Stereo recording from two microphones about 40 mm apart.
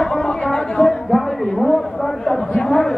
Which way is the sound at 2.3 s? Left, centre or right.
Centre.